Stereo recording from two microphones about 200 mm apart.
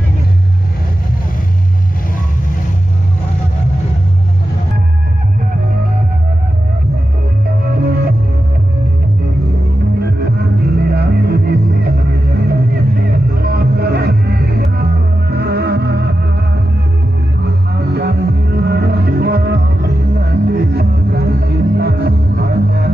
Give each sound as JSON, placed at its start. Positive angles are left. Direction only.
{"t": 7.7, "sound": "music", "side_deg": -50}
{"t": 10.2, "sound": "music", "side_deg": -50}
{"t": 17.7, "sound": "music", "side_deg": -55}